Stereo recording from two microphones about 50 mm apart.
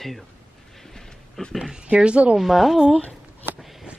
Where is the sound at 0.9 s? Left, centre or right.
Centre.